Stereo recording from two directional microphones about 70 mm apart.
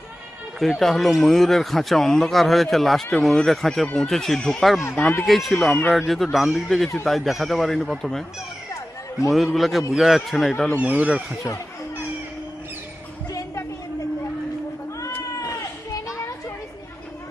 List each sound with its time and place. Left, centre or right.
0.6 s speech: centre
4.9 s speech: left
5.2 s speech: centre
9.3 s speech: centre
10.8 s speech: right